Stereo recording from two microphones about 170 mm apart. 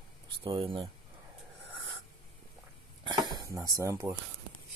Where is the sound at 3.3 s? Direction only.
20° right (ahead or behind).